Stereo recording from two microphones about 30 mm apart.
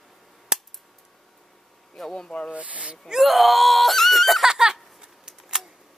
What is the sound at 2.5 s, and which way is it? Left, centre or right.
Speech, right.